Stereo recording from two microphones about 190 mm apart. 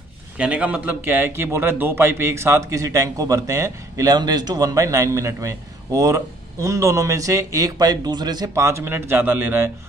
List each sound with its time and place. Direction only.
0.4 s speech: 5° right (ahead or behind)